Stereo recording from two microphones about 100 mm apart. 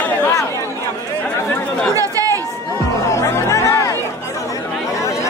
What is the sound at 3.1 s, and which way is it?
Music, 30° left (ahead or behind).